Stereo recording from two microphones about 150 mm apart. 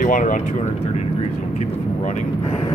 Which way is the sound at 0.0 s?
60° left (ahead or behind).